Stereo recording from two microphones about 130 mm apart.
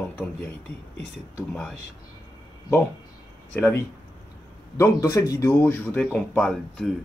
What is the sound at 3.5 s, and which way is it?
Speech, 15° left (ahead or behind).